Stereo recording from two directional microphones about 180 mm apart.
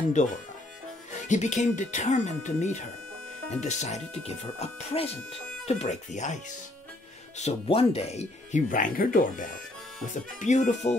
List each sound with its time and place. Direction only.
0.2 s speech: 40° left (ahead or behind)